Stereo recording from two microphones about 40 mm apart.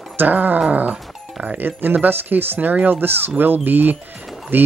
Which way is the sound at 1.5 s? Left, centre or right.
Right.